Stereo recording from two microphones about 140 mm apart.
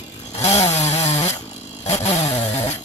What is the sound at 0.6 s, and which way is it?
Chainsaw, 50° left (ahead or behind).